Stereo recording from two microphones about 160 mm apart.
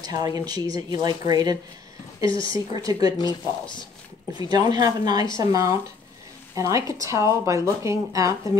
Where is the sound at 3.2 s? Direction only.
25° left (ahead or behind).